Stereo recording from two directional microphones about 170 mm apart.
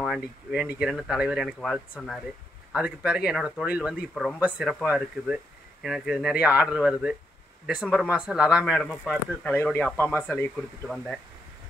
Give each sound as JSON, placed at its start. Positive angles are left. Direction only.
{"t": 0.0, "sound": "speech", "side_deg": 0}
{"t": 4.1, "sound": "speech", "side_deg": 5}
{"t": 4.4, "sound": "speech", "side_deg": -5}